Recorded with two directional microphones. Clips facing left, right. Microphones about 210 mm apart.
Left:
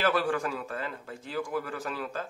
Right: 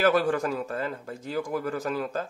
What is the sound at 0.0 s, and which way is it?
Speech, 40° right (ahead or behind).